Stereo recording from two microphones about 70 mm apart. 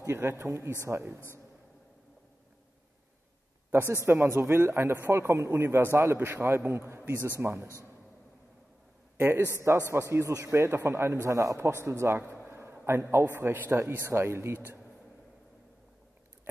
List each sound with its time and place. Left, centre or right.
0.1 s speech: right
3.7 s speech: right
9.2 s speech: right
9.6 s a man's voice: right
10.5 s speech: right
11.3 s speech: right
12.4 s a sound: right
13.7 s speech: right